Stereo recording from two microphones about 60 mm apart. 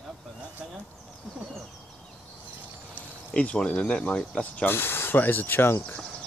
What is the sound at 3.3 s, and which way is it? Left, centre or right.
Speech, left.